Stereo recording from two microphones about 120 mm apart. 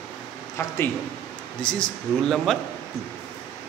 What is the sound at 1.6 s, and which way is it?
A man's voice, 10° left (ahead or behind).